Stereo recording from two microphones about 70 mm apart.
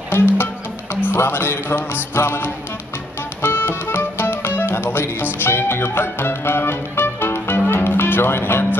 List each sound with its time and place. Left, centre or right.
0.1 s speech: left
3.4 s music: left